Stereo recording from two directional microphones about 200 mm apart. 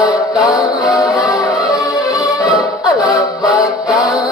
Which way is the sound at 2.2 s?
Centre (ahead or behind).